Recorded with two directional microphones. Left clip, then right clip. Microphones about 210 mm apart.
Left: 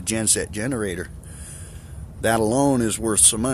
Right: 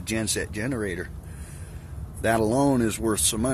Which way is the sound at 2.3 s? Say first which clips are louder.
Left 2 dB; 15° left (ahead or behind).